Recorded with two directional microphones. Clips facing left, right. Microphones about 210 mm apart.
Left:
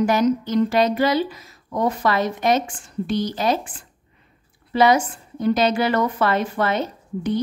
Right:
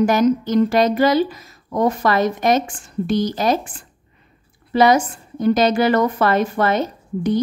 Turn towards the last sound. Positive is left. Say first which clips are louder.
# right 4 dB
turn(degrees=-40)  # may be behind; listen again after turning